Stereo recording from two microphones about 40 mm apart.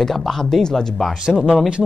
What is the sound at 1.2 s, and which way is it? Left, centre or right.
Speech, right.